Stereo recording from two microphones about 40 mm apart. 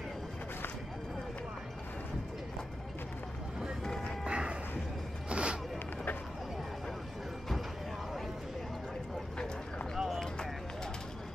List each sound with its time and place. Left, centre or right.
3.8 s music: centre
4.2 s music: right
5.3 s a sound: right
9.9 s run: centre